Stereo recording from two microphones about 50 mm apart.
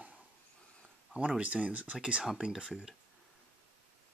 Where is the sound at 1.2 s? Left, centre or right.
Right.